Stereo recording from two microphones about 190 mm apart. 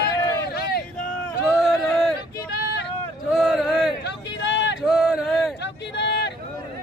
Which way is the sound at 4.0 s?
65° left (ahead or behind).